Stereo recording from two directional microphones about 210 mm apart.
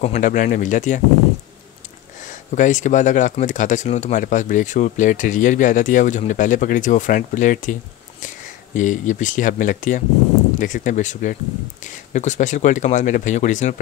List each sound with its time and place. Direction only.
0.0 s speech: 35° left (ahead or behind)
2.2 s speech: 35° left (ahead or behind)
8.7 s speech: 35° left (ahead or behind)